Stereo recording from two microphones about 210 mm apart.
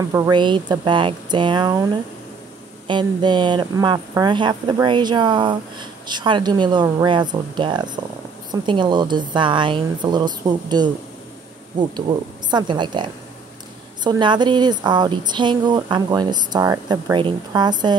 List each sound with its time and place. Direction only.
0.1 s speech: 20° right (ahead or behind)
2.9 s speech: 20° right (ahead or behind)